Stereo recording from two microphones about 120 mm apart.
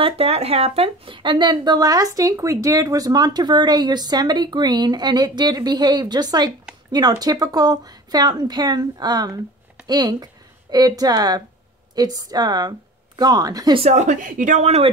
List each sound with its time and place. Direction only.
0.0 s speech: 55° right (ahead or behind); by 13.7 s 30° right (ahead or behind)
13.7 s a woman's voice: 70° right (ahead or behind)